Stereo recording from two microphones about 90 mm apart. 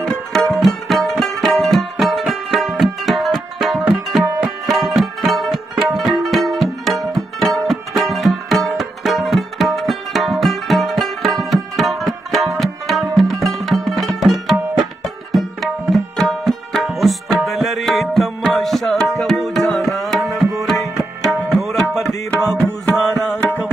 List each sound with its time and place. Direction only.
0.0 s music: 5° left (ahead or behind)
15.3 s tabla: centre (ahead or behind)
21.6 s music: centre (ahead or behind)
22.8 s music: 20° left (ahead or behind)